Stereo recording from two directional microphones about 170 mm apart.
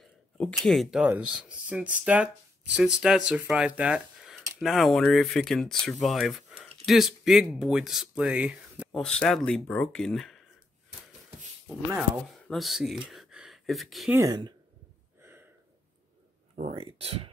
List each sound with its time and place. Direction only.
0.0 s speech: 5° left (ahead or behind)
12.4 s speech: centre (ahead or behind)
14.1 s speech: 20° right (ahead or behind)
16.5 s speech: 40° right (ahead or behind)